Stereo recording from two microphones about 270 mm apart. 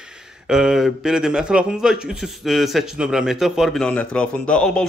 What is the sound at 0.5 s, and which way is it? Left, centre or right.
A man's voice, centre.